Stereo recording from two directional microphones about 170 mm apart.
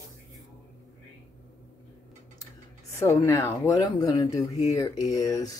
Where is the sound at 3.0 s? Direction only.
15° left (ahead or behind).